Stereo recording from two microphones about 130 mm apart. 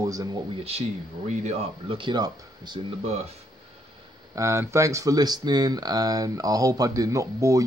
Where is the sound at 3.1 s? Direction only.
55° right (ahead or behind).